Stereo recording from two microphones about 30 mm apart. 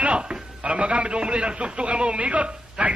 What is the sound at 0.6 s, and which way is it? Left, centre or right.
A man's voice, right.